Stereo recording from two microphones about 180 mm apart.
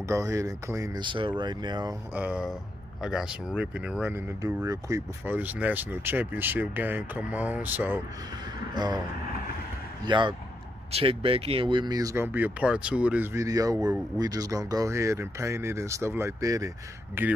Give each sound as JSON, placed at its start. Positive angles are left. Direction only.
{"t": 0.1, "sound": "speech", "side_deg": -15}
{"t": 2.1, "sound": "speech", "side_deg": -5}
{"t": 8.7, "sound": "speech", "side_deg": -25}
{"t": 10.0, "sound": "speech", "side_deg": -25}